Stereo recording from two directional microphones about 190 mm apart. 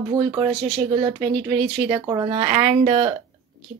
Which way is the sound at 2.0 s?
20° right (ahead or behind).